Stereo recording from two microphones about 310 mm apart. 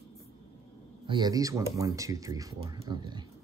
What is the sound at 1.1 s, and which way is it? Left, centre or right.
Speech, centre.